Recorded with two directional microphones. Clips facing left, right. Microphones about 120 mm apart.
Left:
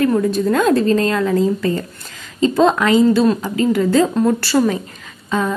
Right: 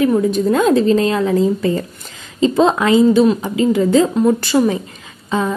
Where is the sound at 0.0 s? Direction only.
20° right (ahead or behind).